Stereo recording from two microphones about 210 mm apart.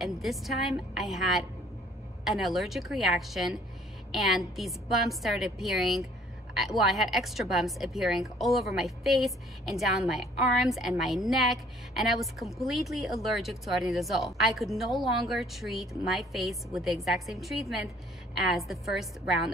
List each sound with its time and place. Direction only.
0.0 s a woman's voice: centre (ahead or behind)